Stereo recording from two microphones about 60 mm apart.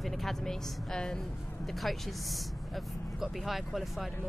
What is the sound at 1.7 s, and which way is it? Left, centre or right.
Speech, centre.